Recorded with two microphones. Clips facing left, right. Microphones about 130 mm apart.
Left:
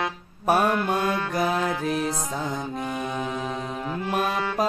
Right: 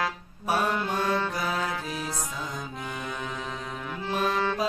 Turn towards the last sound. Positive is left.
turn(degrees=15)  # may be behind; listen again after turning